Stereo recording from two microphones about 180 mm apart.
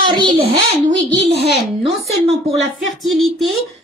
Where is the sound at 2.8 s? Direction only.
Centre (ahead or behind).